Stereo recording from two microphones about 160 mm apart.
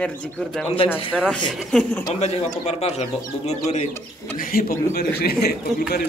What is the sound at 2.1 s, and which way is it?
Speech, 40° left (ahead or behind).